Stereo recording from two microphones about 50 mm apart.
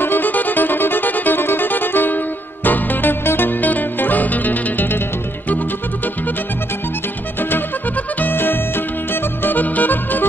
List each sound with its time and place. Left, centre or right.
0.0 s music: left
7.3 s music: left